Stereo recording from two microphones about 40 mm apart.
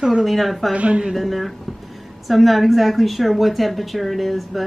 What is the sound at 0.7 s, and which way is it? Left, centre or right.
Speech, right.